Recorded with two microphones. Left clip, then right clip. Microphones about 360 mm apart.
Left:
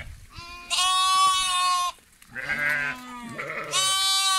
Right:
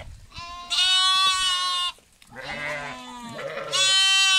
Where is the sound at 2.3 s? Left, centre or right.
Centre.